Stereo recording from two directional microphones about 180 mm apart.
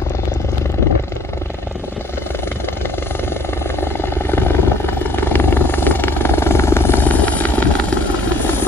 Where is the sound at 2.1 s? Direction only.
15° left (ahead or behind).